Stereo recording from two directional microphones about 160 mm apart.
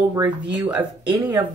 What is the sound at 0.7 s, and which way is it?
Speech, 10° right (ahead or behind).